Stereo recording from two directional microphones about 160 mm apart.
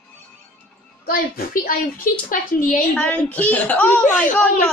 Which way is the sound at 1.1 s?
65° left (ahead or behind).